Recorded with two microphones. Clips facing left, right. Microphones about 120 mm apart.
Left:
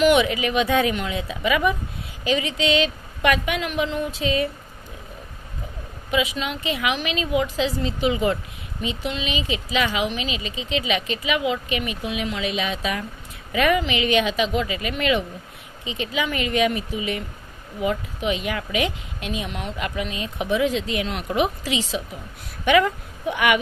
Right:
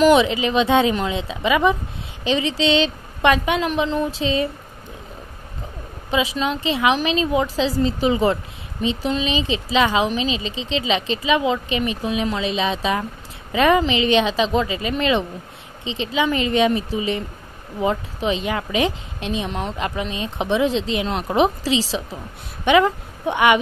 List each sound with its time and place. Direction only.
0.0 s a woman's voice: 30° right (ahead or behind)
6.0 s a woman's voice: 30° right (ahead or behind)